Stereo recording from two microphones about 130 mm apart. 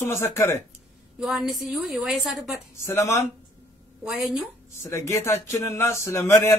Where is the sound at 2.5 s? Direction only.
20° left (ahead or behind).